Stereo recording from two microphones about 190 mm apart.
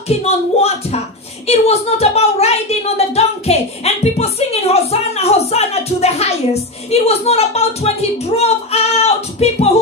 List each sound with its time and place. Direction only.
0.1 s speech: 35° left (ahead or behind)